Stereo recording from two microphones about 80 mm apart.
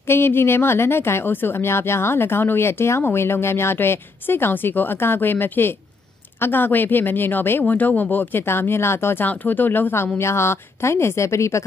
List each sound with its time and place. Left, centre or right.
0.1 s a woman's voice: left